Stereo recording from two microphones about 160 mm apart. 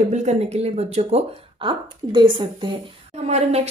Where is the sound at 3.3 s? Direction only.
40° right (ahead or behind).